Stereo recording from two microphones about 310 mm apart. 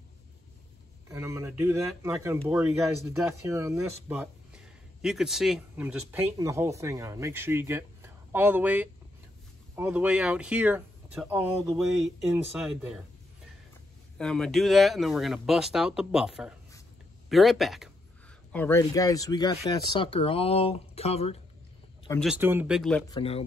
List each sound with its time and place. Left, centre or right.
1.0 s speech: centre
14.1 s speech: centre
22.2 s speech: centre